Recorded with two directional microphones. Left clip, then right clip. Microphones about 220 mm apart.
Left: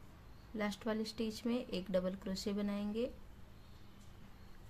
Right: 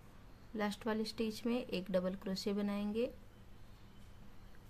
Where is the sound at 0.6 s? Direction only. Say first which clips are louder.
Right 1 dB; 10° right (ahead or behind).